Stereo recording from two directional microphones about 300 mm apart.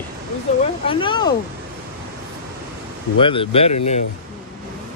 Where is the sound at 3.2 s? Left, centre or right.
Centre.